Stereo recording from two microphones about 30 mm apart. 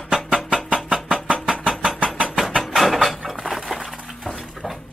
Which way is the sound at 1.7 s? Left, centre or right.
Centre.